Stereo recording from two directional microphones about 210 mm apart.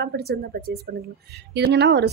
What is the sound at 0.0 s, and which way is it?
A woman's voice, 50° right (ahead or behind).